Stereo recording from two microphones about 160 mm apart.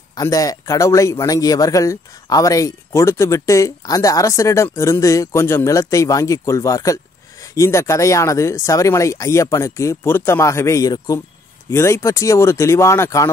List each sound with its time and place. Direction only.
0.1 s a man's voice: 20° left (ahead or behind)